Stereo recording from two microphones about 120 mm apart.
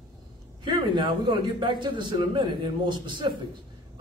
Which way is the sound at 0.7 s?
40° right (ahead or behind).